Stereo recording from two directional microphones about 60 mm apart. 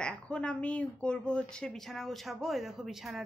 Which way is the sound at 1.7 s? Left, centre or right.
Centre.